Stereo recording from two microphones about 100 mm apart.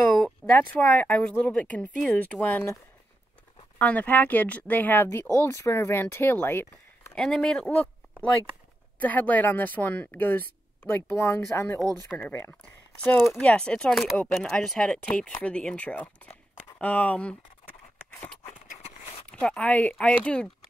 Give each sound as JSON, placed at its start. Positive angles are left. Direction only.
{"t": 0.2, "sound": "a sound", "side_deg": 20}
{"t": 1.0, "sound": "speech", "side_deg": 10}
{"t": 3.7, "sound": "speech", "side_deg": 15}
{"t": 5.2, "sound": "speech", "side_deg": 30}
{"t": 7.2, "sound": "speech", "side_deg": 5}
{"t": 9.0, "sound": "speech", "side_deg": 15}
{"t": 19.3, "sound": "speech", "side_deg": 10}